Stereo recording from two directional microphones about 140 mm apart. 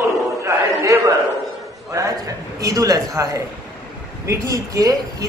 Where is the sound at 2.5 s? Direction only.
25° right (ahead or behind).